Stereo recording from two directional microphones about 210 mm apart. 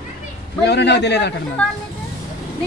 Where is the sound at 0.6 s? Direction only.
55° left (ahead or behind).